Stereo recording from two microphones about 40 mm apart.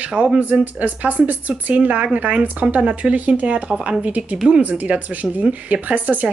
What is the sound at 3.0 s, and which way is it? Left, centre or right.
Speech, centre.